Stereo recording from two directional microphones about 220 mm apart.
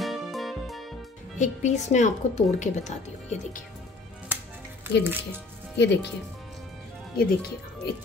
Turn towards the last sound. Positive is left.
turn(degrees=45)  # may be behind; listen again after turning